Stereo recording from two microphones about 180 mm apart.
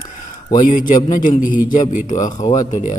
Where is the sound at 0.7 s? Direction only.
45° left (ahead or behind).